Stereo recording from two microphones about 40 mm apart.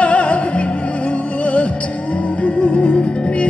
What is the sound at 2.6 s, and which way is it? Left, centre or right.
Music, left.